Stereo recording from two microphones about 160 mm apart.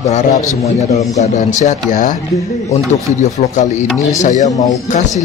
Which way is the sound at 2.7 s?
45° left (ahead or behind).